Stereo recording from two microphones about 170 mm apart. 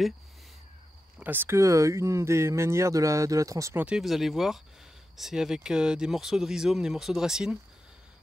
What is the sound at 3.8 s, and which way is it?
Speech, 5° right (ahead or behind).